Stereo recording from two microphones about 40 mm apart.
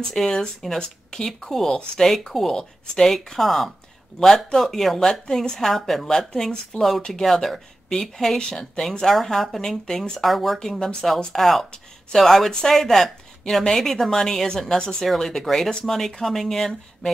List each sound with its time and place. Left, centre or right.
0.1 s a woman's voice: centre
5.7 s speech: centre
6.0 s a woman's voice: centre
10.2 s speech: centre
10.6 s a woman's voice: centre
14.8 s speech: centre
15.0 s a woman's voice: centre